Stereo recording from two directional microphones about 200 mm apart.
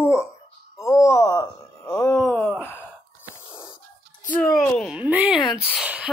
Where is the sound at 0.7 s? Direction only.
15° left (ahead or behind).